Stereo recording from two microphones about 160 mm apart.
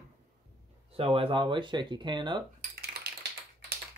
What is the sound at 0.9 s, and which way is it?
Speech, 35° right (ahead or behind).